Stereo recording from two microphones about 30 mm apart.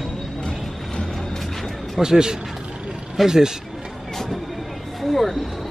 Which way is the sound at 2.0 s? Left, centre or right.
Right.